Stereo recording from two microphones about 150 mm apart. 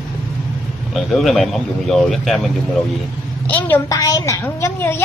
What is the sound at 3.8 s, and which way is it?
A woman's voice, 20° left (ahead or behind).